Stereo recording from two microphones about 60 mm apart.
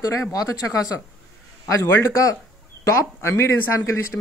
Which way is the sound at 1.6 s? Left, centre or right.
Left.